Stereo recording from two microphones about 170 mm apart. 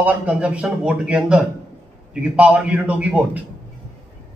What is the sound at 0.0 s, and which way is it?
A man's voice, 5° right (ahead or behind).